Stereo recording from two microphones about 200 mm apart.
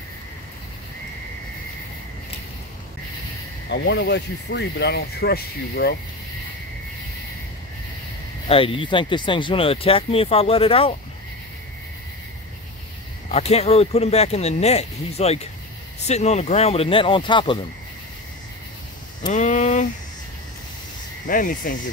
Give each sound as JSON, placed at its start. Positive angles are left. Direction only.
{"t": 3.7, "sound": "speech", "side_deg": 60}
{"t": 8.5, "sound": "speech", "side_deg": 25}
{"t": 13.3, "sound": "speech", "side_deg": 30}
{"t": 19.3, "sound": "a sound", "side_deg": 40}
{"t": 21.3, "sound": "speech", "side_deg": 45}